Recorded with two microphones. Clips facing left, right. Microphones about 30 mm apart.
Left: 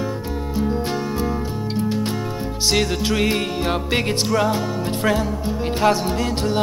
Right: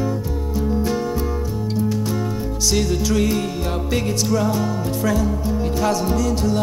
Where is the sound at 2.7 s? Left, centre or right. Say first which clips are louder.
Even; left.